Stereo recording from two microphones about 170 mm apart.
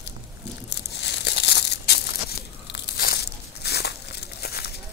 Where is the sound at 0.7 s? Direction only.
90° left; by 3.1 s 70° left (ahead or behind).